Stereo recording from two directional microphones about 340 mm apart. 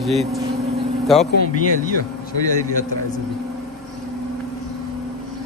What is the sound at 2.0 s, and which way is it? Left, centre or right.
Speech, left.